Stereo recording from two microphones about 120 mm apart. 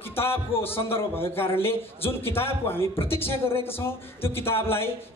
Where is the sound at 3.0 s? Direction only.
50° left (ahead or behind).